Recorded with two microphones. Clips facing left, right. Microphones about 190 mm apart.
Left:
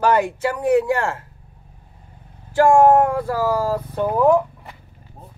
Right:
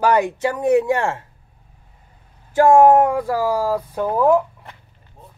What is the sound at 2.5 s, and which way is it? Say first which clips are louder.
Speech: right 1 dB; 15° right (ahead or behind).